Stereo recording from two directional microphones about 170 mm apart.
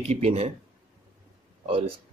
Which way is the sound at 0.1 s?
40° right (ahead or behind).